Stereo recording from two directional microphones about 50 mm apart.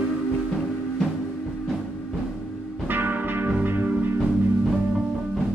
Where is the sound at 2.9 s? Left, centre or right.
Right.